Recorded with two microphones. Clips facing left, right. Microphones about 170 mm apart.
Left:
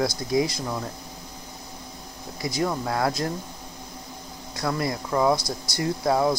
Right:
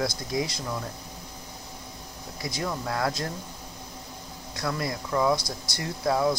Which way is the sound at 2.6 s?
30° left (ahead or behind).